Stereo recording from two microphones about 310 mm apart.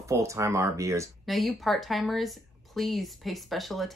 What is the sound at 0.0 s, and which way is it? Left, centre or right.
A woman's voice, centre.